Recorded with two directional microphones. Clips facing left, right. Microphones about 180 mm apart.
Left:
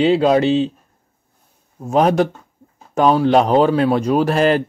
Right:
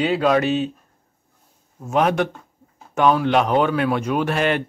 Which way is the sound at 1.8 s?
35° left (ahead or behind).